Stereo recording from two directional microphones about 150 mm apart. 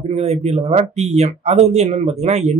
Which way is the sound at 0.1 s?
45° right (ahead or behind).